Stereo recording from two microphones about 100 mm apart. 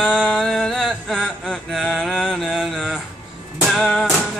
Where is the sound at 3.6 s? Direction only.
5° left (ahead or behind).